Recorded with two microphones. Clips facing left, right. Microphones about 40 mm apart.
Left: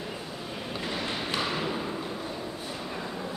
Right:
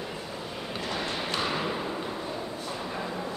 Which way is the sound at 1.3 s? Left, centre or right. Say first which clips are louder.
Right 1 dB; centre.